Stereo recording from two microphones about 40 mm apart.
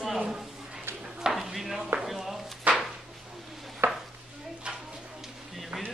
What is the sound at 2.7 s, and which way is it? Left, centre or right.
Chopping, right.